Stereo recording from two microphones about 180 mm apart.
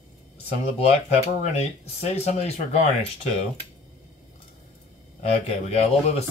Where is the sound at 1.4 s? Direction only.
35° left (ahead or behind).